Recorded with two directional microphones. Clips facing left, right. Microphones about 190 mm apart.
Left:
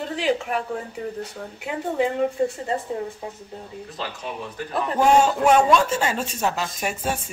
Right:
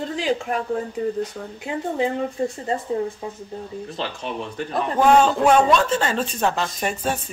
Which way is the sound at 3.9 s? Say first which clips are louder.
Right 2 dB; 25° right (ahead or behind).